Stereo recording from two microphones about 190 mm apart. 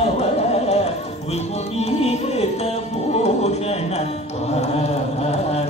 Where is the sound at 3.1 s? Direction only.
35° left (ahead or behind).